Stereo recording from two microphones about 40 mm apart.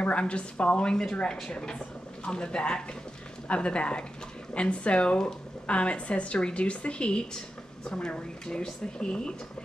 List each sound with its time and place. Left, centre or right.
0.0 s a woman's voice: left